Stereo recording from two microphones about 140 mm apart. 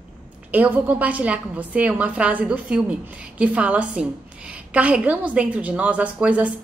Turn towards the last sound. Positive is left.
turn(degrees=-10)  # may be behind; listen again after turning